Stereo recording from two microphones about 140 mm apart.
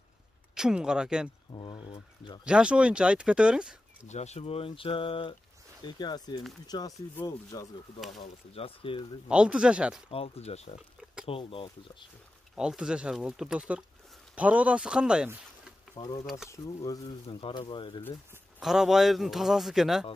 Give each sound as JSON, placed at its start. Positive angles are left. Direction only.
{"t": 0.6, "sound": "a man's voice", "side_deg": -5}
{"t": 1.5, "sound": "speech", "side_deg": 35}
{"t": 2.4, "sound": "speech", "side_deg": -5}
{"t": 4.1, "sound": "speech", "side_deg": 55}
{"t": 8.5, "sound": "speech", "side_deg": 40}
{"t": 9.3, "sound": "speech", "side_deg": -5}
{"t": 10.1, "sound": "speech", "side_deg": 45}
{"t": 12.5, "sound": "a man's voice", "side_deg": -5}
{"t": 16.0, "sound": "speech", "side_deg": 25}
{"t": 17.4, "sound": "speech", "side_deg": 35}
{"t": 18.6, "sound": "a man's voice", "side_deg": -5}